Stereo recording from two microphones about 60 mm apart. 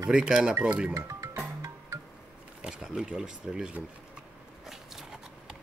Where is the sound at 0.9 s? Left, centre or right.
Right.